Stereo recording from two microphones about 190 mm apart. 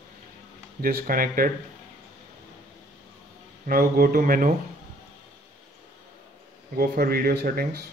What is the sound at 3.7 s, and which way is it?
Speech, 50° right (ahead or behind).